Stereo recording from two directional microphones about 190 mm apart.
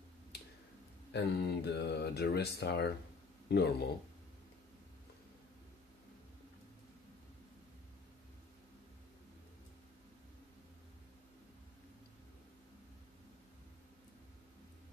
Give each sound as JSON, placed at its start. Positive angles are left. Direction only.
{"t": 1.1, "sound": "speech", "side_deg": 60}